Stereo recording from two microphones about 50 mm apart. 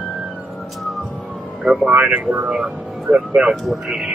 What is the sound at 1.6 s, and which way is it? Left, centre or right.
Speech, centre.